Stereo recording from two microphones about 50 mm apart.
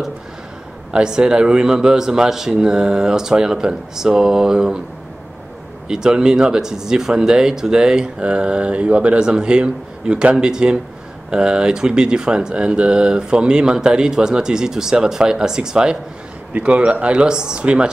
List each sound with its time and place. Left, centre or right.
0.9 s speech: centre
5.9 s speech: centre
16.5 s speech: right